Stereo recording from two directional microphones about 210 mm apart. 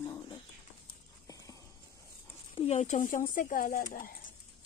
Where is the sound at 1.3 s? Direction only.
15° left (ahead or behind).